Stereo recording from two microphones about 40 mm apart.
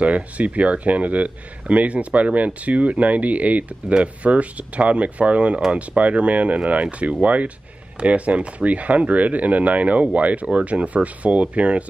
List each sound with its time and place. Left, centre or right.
0.0 s a man's voice: right